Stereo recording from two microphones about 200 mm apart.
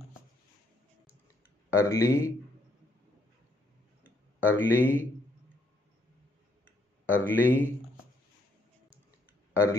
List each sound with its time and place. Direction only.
1.8 s speech: 15° left (ahead or behind)
4.4 s speech: 10° left (ahead or behind)
7.1 s speech: 10° left (ahead or behind)
9.5 s speech: 15° left (ahead or behind)